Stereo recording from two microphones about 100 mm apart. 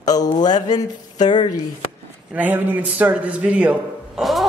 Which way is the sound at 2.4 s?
15° right (ahead or behind).